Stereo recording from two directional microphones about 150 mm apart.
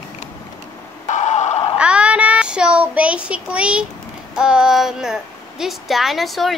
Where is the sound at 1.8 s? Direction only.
10° right (ahead or behind).